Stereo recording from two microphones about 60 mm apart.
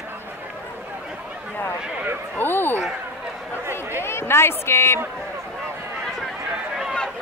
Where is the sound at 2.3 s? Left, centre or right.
Left.